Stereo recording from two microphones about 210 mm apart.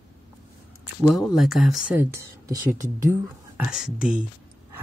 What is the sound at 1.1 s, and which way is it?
Speech, centre (ahead or behind).